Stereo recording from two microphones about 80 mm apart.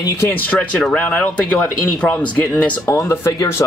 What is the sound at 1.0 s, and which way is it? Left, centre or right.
Speech, centre.